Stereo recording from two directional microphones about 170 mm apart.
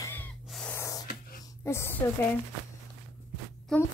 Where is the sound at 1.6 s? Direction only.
15° left (ahead or behind).